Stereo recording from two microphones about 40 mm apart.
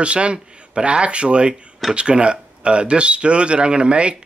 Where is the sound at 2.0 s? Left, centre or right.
Right.